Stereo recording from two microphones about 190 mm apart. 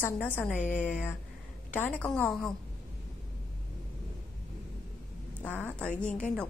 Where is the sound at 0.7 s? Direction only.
10° left (ahead or behind).